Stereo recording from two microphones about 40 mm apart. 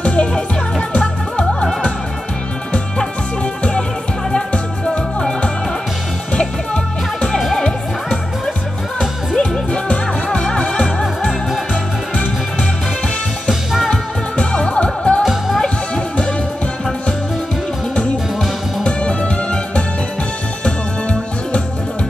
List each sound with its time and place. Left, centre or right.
0.0 s music: left
1.4 s music: centre
6.3 s music: left
9.7 s music: left
14.3 s music: left
15.2 s music: centre
15.6 s music: left
18.9 s music: left